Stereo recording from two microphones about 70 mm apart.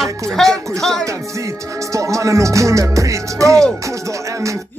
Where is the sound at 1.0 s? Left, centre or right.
Right.